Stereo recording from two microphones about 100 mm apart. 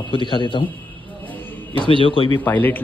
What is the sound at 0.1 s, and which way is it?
Speech, 55° left (ahead or behind).